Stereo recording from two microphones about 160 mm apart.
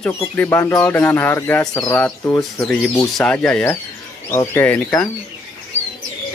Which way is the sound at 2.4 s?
Centre (ahead or behind).